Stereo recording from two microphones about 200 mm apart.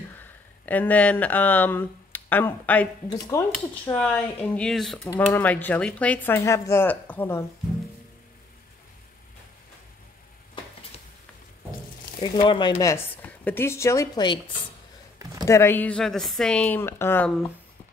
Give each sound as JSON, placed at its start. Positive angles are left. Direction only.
{"t": 0.2, "sound": "speech", "side_deg": 10}
{"t": 12.2, "sound": "speech", "side_deg": 25}
{"t": 15.4, "sound": "speech", "side_deg": 15}